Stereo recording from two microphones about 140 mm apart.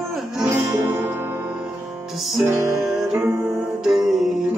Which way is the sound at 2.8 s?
Centre (ahead or behind).